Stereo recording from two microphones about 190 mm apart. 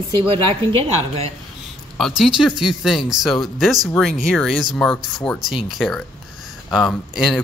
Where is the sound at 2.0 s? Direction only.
Centre (ahead or behind).